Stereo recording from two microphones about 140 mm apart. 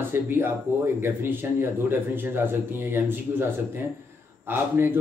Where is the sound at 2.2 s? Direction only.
15° right (ahead or behind).